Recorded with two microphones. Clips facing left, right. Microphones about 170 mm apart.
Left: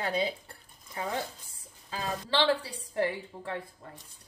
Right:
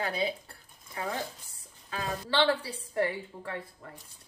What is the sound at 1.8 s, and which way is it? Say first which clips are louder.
A woman's voice: even; 20° left (ahead or behind).